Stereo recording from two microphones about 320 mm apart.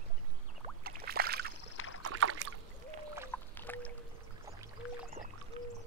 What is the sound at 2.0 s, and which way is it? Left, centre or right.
Rowboat, right.